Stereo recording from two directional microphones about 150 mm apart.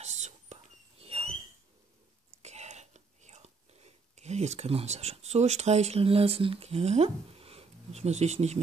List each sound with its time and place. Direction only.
0.0 s whispering: 50° right (ahead or behind)
1.0 s a sound: 40° right (ahead or behind)
2.3 s whispering: 45° right (ahead or behind)